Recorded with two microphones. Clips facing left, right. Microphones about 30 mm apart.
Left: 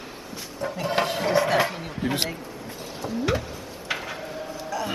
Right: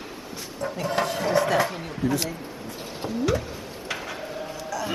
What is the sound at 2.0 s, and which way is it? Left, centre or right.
Speech, left.